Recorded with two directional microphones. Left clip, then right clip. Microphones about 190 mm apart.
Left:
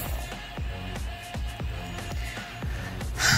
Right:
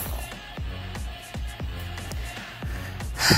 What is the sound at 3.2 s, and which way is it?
Gasp, 15° right (ahead or behind).